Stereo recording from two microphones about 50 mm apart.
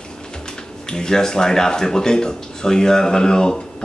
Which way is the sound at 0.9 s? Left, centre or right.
Centre.